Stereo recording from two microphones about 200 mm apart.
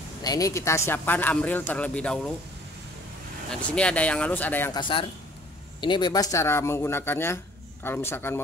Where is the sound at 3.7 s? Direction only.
5° left (ahead or behind).